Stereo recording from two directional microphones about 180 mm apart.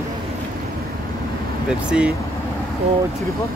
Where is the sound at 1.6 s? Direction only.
5° right (ahead or behind).